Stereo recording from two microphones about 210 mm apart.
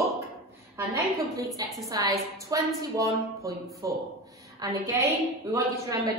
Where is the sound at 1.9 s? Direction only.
15° right (ahead or behind).